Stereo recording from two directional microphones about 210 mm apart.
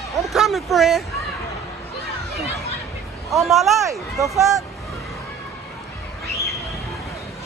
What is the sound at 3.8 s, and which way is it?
Speech, 15° right (ahead or behind).